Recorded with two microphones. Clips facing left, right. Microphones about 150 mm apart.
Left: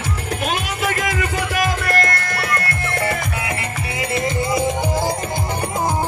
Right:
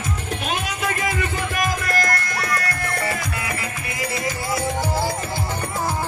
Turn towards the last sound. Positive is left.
turn(degrees=20)  # may be behind; listen again after turning